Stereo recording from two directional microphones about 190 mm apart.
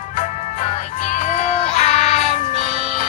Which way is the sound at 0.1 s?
40° left (ahead or behind).